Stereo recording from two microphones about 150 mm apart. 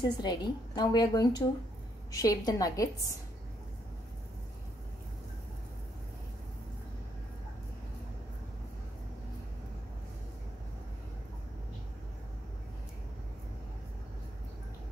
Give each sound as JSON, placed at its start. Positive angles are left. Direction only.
{"t": 0.0, "sound": "a woman's voice", "side_deg": 30}